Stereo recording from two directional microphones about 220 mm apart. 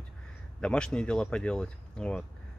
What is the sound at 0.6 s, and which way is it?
Speech, 5° left (ahead or behind).